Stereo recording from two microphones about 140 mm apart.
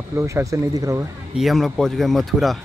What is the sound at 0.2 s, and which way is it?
Speech, 20° right (ahead or behind).